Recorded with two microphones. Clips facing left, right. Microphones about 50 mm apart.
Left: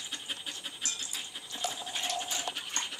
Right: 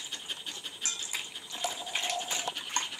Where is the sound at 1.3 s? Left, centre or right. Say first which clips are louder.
Right 1 dB; centre.